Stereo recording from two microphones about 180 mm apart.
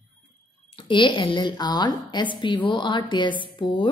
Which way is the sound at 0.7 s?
25° left (ahead or behind).